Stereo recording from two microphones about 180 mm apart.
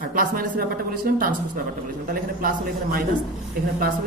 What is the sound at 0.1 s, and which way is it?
Speech, 50° right (ahead or behind).